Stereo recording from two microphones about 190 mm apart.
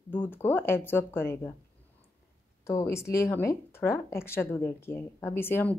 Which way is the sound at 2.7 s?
15° left (ahead or behind).